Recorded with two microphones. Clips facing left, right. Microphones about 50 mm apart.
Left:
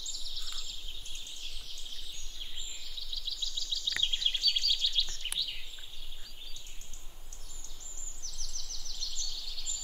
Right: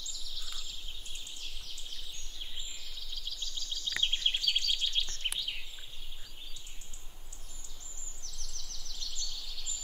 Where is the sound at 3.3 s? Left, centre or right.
Right.